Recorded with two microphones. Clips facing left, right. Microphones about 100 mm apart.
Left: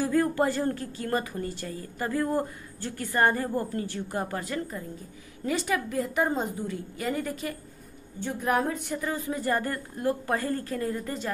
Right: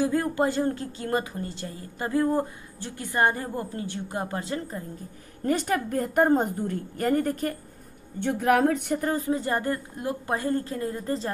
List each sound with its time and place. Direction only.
0.0 s a woman's voice: 20° right (ahead or behind)
5.4 s a woman's voice: 45° right (ahead or behind)
8.2 s a sound: 65° right (ahead or behind)
9.0 s speech: 40° right (ahead or behind)
9.3 s a woman's voice: 25° right (ahead or behind)